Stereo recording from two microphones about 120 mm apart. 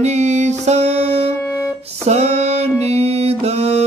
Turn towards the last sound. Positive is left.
turn(degrees=-60)  # may be behind; listen again after turning